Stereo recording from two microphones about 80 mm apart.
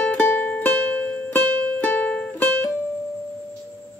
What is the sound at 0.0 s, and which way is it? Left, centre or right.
Music, centre.